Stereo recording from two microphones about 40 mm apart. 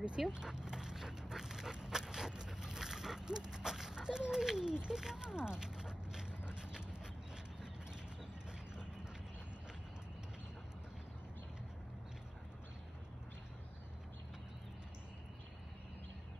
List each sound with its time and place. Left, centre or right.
0.3 s dog: centre